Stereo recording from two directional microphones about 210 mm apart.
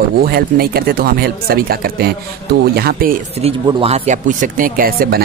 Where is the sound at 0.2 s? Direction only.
45° right (ahead or behind).